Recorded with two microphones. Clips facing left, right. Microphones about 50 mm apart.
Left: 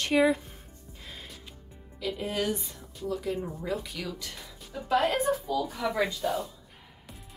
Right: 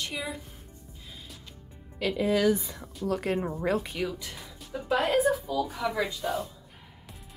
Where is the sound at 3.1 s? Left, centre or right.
Right.